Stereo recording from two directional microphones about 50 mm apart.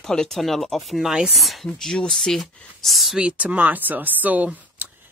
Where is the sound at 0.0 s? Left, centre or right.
Centre.